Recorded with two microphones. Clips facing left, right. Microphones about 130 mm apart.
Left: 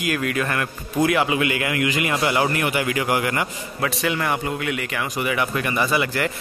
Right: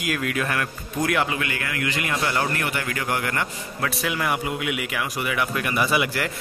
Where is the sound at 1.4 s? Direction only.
15° left (ahead or behind).